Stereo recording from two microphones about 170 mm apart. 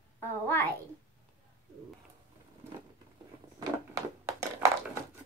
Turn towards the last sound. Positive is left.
turn(degrees=-20)  # may be behind; listen again after turning